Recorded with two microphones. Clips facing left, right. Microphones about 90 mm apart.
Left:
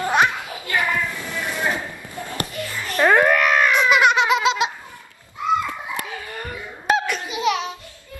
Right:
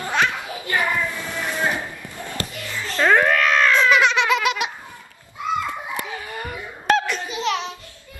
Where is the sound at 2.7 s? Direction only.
15° left (ahead or behind).